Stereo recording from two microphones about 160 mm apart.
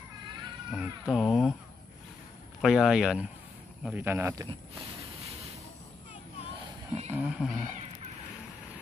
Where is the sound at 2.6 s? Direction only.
Centre (ahead or behind).